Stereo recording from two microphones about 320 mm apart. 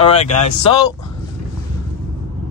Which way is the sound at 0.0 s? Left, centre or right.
Centre.